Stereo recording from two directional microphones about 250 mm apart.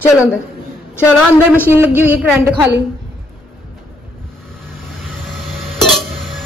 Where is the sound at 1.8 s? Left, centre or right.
Centre.